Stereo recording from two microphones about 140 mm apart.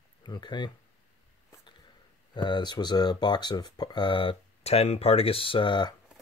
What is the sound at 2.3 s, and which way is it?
Speech, 30° left (ahead or behind).